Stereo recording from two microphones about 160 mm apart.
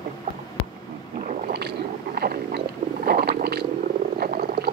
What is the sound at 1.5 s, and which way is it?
Boat, 90° right.